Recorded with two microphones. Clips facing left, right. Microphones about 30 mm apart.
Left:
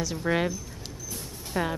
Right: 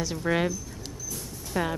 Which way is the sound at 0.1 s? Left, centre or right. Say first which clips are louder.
Right 1 dB; centre.